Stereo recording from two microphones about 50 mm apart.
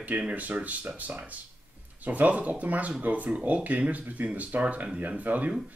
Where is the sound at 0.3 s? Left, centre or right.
Right.